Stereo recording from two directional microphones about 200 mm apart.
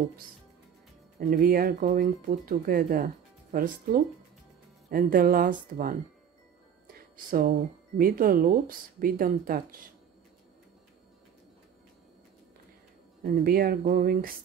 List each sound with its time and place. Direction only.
1.2 s speech: 45° right (ahead or behind)
6.9 s music: 45° right (ahead or behind)
8.0 s speech: 45° right (ahead or behind)
13.2 s speech: 50° right (ahead or behind)